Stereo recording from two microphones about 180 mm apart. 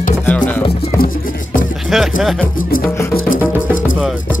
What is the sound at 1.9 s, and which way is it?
Speech, centre (ahead or behind).